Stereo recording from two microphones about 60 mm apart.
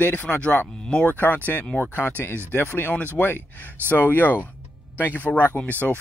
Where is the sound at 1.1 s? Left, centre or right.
Left.